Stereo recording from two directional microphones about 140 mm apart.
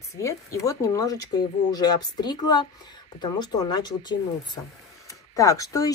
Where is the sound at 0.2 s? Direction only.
20° left (ahead or behind).